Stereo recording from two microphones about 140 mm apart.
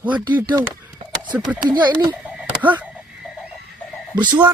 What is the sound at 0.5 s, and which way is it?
Speech, 25° right (ahead or behind).